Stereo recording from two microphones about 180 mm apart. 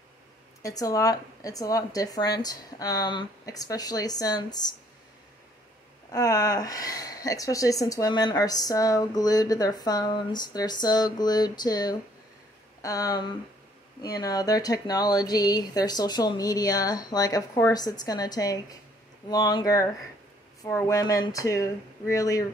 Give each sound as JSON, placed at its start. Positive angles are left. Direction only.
{"t": 0.6, "sound": "speech", "side_deg": 20}
{"t": 6.1, "sound": "speech", "side_deg": 20}